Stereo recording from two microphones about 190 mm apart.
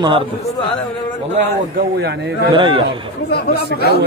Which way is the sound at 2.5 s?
25° right (ahead or behind).